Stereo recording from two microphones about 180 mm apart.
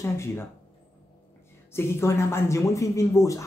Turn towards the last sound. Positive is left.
turn(degrees=15)  # may be behind; listen again after turning